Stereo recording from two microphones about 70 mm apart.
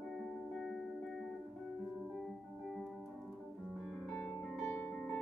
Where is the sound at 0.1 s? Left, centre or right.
Centre.